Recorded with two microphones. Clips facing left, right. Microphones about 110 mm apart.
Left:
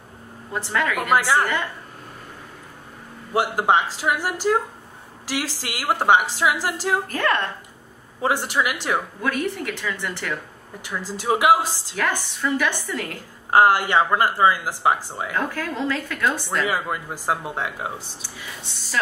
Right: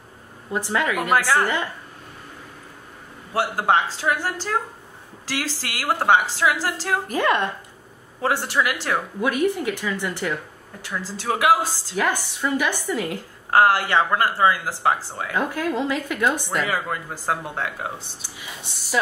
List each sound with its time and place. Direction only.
0.5 s a woman's voice: 15° right (ahead or behind)
1.1 s speech: 15° left (ahead or behind)
3.3 s speech: 15° left (ahead or behind)
7.1 s a woman's voice: 15° right (ahead or behind)
8.2 s speech: 15° left (ahead or behind)
9.2 s a woman's voice: 15° right (ahead or behind)
10.8 s speech: 15° left (ahead or behind)
11.9 s a woman's voice: 15° right (ahead or behind)
13.5 s speech: 15° left (ahead or behind)
15.3 s a woman's voice: 15° right (ahead or behind)
16.6 s speech: 15° left (ahead or behind)